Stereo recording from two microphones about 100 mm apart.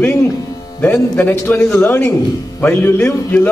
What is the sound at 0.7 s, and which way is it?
A man's voice, 20° left (ahead or behind).